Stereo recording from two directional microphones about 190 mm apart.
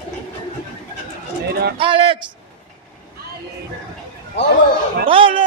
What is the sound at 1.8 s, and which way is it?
Speech, 30° right (ahead or behind).